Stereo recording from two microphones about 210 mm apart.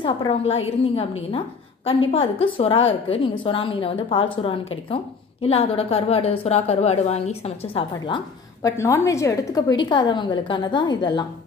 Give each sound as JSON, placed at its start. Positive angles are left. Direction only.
{"t": 0.0, "sound": "a woman's voice", "side_deg": 25}
{"t": 1.9, "sound": "a woman's voice", "side_deg": 25}
{"t": 8.6, "sound": "a woman's voice", "side_deg": 15}